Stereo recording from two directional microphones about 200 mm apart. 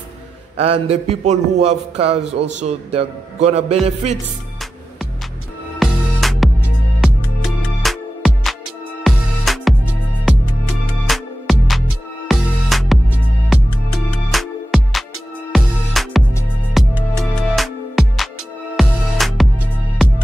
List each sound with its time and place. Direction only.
0.6 s a man's voice: 30° right (ahead or behind)
5.8 s music: centre (ahead or behind)
7.8 s music: centre (ahead or behind)
11.1 s music: centre (ahead or behind)